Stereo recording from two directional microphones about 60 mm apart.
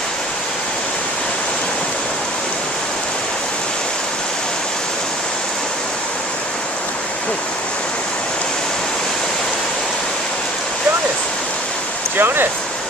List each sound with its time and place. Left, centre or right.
12.2 s speech: right